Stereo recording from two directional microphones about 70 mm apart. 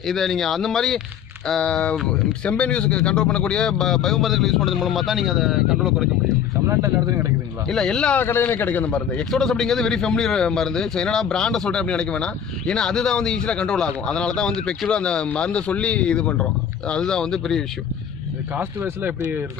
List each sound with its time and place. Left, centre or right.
0.0 s speech: centre
1.5 s speech: centre
6.7 s a man's voice: right
7.7 s a man's voice: centre
8.2 s a man's voice: left
9.3 s a man's voice: centre
18.6 s speech: right